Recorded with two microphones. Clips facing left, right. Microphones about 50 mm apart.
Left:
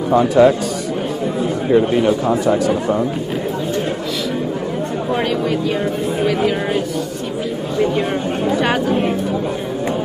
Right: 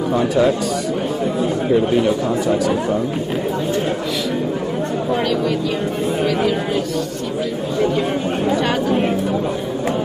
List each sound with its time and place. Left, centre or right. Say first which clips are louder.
0.3 s a man's voice: left 5 dB; centre
1.7 s speech: left 3 dB; left
6.2 s chatter: left 3 dB; centre